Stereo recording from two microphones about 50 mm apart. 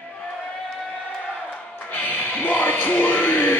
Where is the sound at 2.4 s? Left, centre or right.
Left.